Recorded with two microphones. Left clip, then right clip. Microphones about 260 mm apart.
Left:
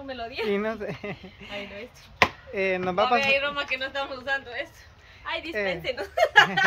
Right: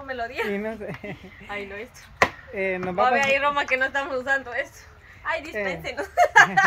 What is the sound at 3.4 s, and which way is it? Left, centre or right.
Speech, right.